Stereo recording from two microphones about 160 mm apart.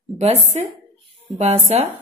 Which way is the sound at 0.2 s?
45° right (ahead or behind).